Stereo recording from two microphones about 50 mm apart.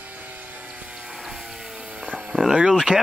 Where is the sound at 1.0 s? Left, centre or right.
Centre.